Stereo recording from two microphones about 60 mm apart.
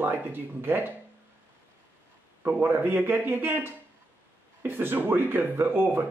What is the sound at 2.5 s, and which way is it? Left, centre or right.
Speech, right.